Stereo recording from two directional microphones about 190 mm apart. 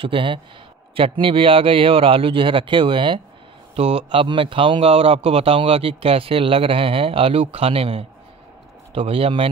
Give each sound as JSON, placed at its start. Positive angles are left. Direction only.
{"t": 0.0, "sound": "a man's voice", "side_deg": -25}